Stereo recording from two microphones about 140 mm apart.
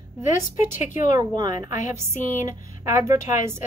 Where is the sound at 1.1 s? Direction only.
30° right (ahead or behind).